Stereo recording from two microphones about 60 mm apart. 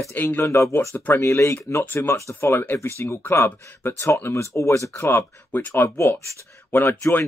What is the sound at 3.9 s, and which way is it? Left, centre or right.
A man's voice, left.